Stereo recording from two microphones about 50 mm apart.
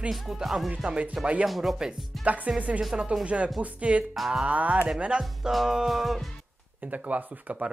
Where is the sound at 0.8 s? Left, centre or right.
Right.